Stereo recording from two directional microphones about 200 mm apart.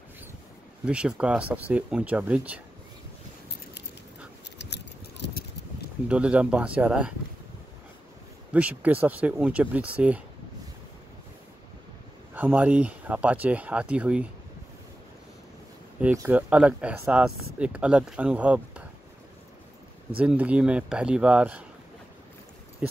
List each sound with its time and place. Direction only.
0.8 s speech: 5° right (ahead or behind)
4.6 s a sound: 60° left (ahead or behind)
6.0 s speech: 5° right (ahead or behind)
8.5 s speech: 5° right (ahead or behind)
12.4 s speech: 10° right (ahead or behind)
16.0 s speech: 10° right (ahead or behind)
20.2 s speech: 5° right (ahead or behind)